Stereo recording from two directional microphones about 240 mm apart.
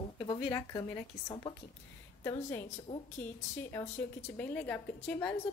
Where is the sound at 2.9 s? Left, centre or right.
Left.